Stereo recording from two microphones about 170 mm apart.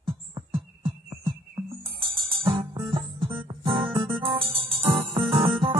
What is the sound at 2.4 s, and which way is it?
Music, 30° right (ahead or behind).